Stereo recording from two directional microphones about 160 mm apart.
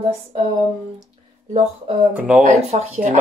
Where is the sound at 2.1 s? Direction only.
5° right (ahead or behind).